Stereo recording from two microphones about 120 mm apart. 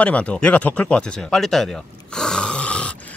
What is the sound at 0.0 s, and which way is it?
Speech, 10° left (ahead or behind).